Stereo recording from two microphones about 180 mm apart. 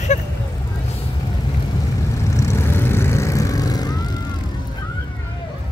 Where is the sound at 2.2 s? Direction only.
15° left (ahead or behind).